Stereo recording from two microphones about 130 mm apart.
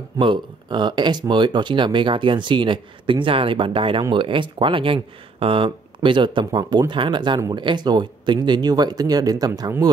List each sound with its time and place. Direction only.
0.2 s speech: 35° right (ahead or behind)